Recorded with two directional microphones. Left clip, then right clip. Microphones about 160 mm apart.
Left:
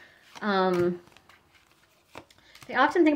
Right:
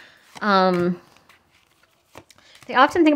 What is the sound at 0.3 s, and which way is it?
Speech, 35° right (ahead or behind).